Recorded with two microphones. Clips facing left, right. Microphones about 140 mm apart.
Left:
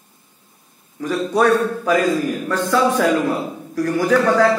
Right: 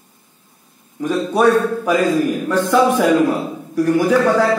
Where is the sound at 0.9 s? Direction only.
15° right (ahead or behind).